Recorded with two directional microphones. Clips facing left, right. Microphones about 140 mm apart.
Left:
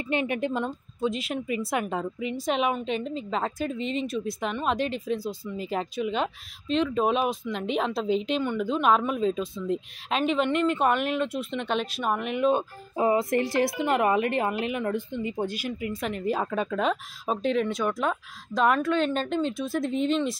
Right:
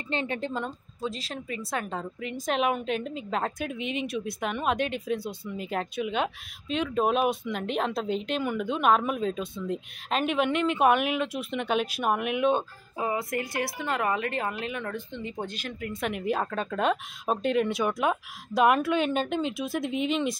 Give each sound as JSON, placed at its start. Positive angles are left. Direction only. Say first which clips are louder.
{"t": 0.1, "sound": "a woman's voice", "louder": "left 3 dB", "side_deg": 15}
{"t": 1.7, "sound": "a woman's voice", "louder": "left 4 dB", "side_deg": 15}
{"t": 12.9, "sound": "a woman's voice", "louder": "left 6 dB", "side_deg": 30}
{"t": 16.0, "sound": "speech", "louder": "right 1 dB", "side_deg": -5}